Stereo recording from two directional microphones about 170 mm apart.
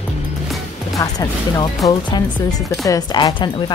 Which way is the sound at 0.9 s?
25° left (ahead or behind).